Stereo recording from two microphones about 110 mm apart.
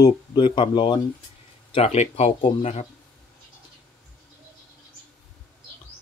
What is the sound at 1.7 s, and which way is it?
Speech, 70° left (ahead or behind).